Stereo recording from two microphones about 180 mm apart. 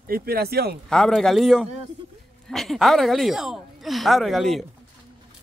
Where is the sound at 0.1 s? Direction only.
60° right (ahead or behind).